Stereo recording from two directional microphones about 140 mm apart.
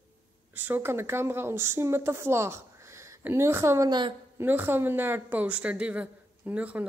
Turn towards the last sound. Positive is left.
turn(degrees=-10)  # may be behind; listen again after turning